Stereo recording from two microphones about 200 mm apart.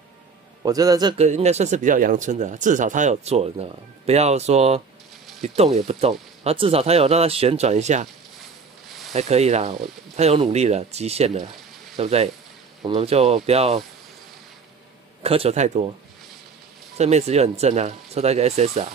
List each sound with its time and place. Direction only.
0.7 s speech: 20° right (ahead or behind)
1.1 s speech: 35° right (ahead or behind)
9.1 s speech: 35° right (ahead or behind)
15.2 s speech: 30° right (ahead or behind)
16.9 s speech: 35° right (ahead or behind)